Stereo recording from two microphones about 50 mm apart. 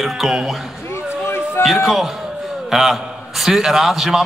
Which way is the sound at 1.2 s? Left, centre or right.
Left.